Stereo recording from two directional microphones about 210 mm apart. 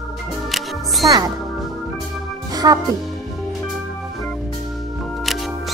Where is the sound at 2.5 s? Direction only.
20° right (ahead or behind).